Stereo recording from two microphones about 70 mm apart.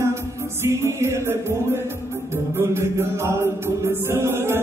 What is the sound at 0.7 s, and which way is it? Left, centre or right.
Music, right.